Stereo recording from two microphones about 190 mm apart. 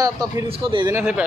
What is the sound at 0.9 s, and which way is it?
Speech, 5° right (ahead or behind).